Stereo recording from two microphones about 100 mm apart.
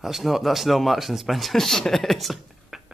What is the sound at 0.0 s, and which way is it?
A man's voice, centre (ahead or behind).